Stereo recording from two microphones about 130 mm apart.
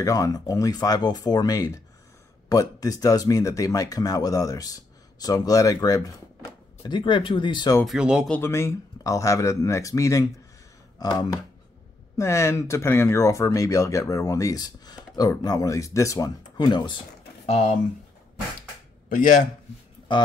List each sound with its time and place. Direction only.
0.0 s speech: 25° left (ahead or behind)
6.9 s speech: 40° left (ahead or behind)
7.8 s speech: 5° right (ahead or behind)
8.3 s speech: 20° left (ahead or behind); by 17.0 s 35° left (ahead or behind)
19.0 s speech: 85° left